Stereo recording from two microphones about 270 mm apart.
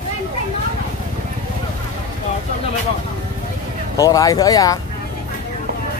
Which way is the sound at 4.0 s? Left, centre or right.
Centre.